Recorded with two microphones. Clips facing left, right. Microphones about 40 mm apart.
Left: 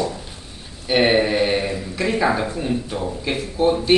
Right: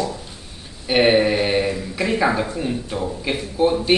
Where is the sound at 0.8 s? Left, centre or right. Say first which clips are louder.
Right 1 dB; centre.